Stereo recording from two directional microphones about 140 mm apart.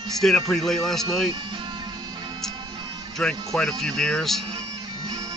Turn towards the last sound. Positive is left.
turn(degrees=5)  # may be behind; listen again after turning